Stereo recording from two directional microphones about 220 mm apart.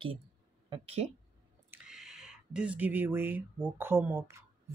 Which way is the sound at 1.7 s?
5° right (ahead or behind).